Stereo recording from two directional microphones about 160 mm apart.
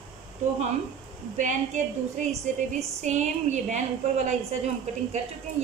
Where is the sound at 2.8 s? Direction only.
45° right (ahead or behind).